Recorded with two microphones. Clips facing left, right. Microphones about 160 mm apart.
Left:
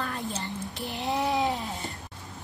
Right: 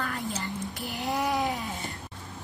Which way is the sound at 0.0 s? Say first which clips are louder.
Even; 20° left (ahead or behind).